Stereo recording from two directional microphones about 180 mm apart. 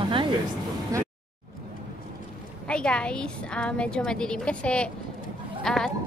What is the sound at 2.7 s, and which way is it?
A woman's voice, 5° left (ahead or behind).